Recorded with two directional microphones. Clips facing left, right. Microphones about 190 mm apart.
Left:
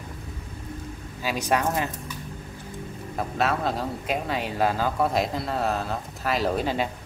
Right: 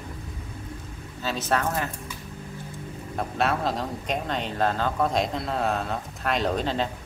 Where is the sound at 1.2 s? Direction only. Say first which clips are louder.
Left 1 dB; 15° left (ahead or behind).